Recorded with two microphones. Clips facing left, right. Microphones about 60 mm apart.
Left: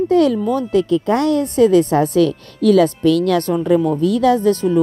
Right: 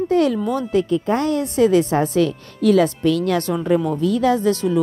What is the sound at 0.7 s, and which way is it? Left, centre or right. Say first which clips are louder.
Speech: left 3 dB; left.